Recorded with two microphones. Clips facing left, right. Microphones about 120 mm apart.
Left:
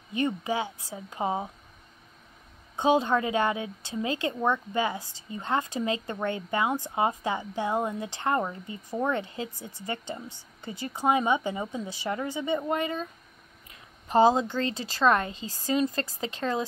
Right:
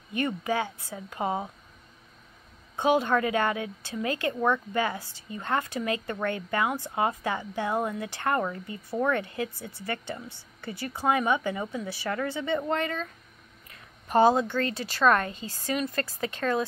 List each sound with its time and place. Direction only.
0.1 s a woman's voice: 20° left (ahead or behind)
2.7 s a woman's voice: 20° left (ahead or behind)
13.7 s a sound: 20° left (ahead or behind)
14.6 s a woman's voice: 20° left (ahead or behind)